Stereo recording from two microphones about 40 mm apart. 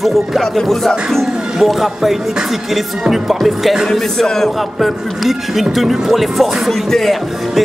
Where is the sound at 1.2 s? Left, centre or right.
Centre.